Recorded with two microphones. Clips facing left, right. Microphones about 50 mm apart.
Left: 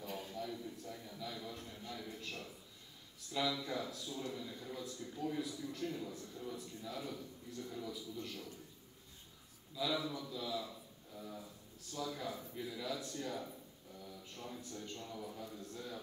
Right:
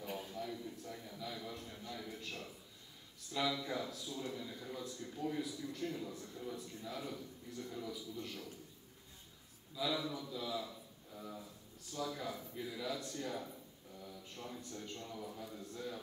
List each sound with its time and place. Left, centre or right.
0.0 s a sound: centre
3.3 s a man's voice: centre
9.9 s a man's voice: centre